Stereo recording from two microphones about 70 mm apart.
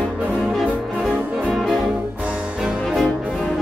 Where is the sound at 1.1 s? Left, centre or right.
Centre.